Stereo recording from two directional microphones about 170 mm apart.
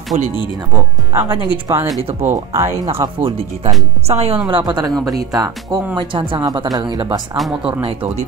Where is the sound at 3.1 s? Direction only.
35° right (ahead or behind).